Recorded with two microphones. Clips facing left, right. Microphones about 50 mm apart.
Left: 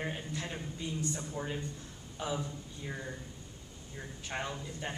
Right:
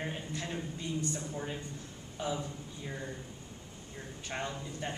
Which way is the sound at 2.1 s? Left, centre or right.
Centre.